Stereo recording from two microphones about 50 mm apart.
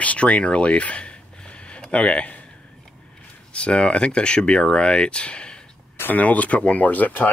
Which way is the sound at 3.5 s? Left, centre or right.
Left.